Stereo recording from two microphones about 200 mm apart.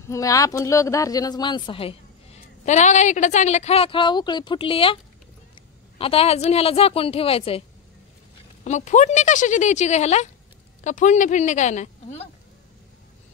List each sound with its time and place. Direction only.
0.1 s a woman's voice: 15° left (ahead or behind)
5.9 s a woman's voice: 30° left (ahead or behind)
8.6 s a woman's voice: 35° left (ahead or behind)